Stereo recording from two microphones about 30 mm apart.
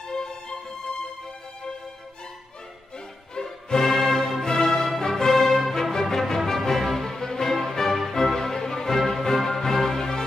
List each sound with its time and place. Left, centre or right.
0.1 s music: left
3.3 s music: centre